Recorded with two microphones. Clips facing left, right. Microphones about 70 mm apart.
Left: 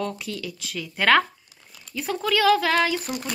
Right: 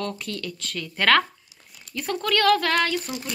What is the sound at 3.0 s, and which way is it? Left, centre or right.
Speech, left.